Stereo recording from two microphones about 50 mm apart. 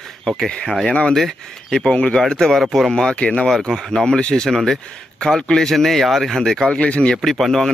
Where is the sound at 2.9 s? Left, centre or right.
Centre.